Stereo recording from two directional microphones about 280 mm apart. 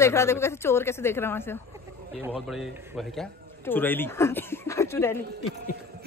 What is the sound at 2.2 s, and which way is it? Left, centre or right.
A man's voice, centre.